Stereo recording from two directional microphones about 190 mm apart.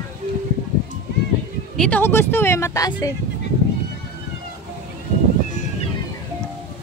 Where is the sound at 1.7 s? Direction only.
5° left (ahead or behind).